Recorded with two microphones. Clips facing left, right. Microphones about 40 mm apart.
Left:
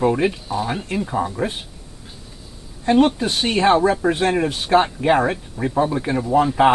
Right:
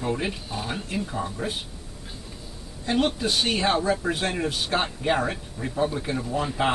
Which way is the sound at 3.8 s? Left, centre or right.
Left.